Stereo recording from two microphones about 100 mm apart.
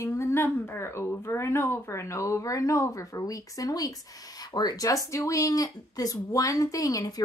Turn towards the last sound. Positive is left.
turn(degrees=35)  # may be behind; listen again after turning